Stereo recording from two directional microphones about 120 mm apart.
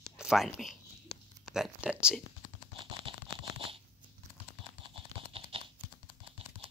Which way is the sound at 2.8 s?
45° right (ahead or behind).